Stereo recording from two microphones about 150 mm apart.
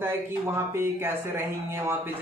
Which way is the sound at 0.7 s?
15° right (ahead or behind).